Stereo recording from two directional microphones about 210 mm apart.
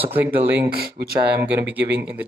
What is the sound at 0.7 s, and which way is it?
Speech, 50° right (ahead or behind).